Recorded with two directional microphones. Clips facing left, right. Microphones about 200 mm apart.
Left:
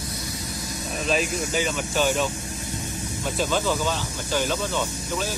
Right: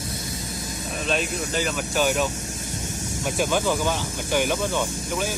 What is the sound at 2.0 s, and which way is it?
Speech, 10° right (ahead or behind).